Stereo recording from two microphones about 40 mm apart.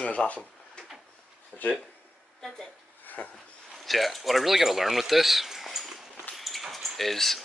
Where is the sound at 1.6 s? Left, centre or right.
Left.